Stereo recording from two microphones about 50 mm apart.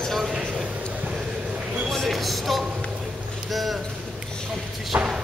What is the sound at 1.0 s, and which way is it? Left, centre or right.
Vehicle, right.